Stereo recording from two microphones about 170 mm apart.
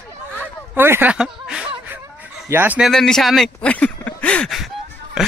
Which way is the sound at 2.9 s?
5° left (ahead or behind).